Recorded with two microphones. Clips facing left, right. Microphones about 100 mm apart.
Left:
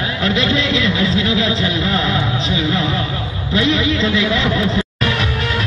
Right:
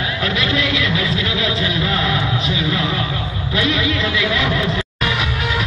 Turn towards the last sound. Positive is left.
turn(degrees=25)  # may be behind; listen again after turning